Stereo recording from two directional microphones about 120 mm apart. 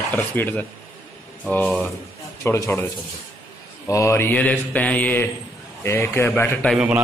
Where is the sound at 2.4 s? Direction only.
25° left (ahead or behind).